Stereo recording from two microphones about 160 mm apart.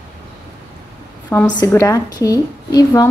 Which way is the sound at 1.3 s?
10° left (ahead or behind).